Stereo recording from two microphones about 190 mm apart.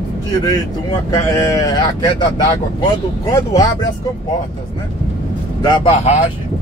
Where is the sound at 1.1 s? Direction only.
15° left (ahead or behind).